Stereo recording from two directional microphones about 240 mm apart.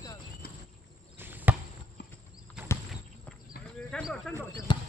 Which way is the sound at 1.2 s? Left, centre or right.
Centre.